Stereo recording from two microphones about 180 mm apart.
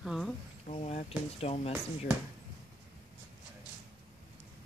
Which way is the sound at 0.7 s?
35° left (ahead or behind).